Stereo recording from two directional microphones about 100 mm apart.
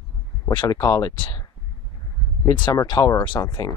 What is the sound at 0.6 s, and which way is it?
Speech, 40° left (ahead or behind).